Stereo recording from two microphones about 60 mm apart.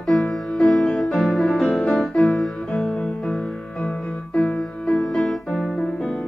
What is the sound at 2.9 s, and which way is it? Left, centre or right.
Music, left.